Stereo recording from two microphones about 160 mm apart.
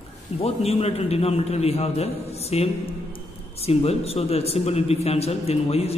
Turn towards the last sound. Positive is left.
turn(degrees=40)  # may be behind; listen again after turning